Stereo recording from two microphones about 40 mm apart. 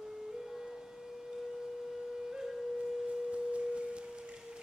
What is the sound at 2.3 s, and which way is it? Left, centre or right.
Music, centre.